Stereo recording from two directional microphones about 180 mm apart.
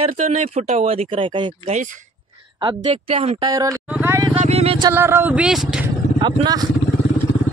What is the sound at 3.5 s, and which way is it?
Speech, 20° right (ahead or behind).